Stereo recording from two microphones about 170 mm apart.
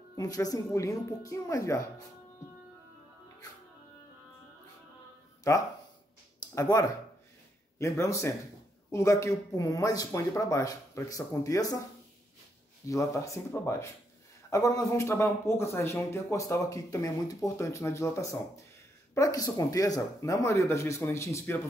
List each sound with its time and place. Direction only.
0.2 s speech: 20° left (ahead or behind)
5.5 s speech: 20° left (ahead or behind)
12.8 s speech: 20° left (ahead or behind)